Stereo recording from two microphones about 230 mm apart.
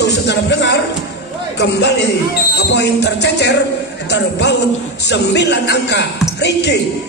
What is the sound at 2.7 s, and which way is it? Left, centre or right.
Speech, left.